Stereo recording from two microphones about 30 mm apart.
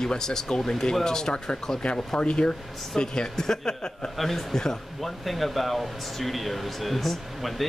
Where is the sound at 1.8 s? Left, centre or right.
Left.